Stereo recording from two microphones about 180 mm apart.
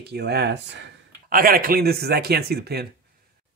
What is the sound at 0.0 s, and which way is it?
Speech, 65° right (ahead or behind).